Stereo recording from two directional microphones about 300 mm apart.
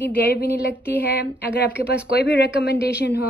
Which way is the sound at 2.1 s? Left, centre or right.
Left.